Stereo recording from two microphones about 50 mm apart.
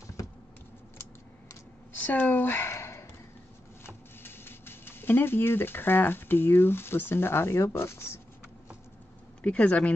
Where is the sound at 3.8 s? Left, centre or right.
Left.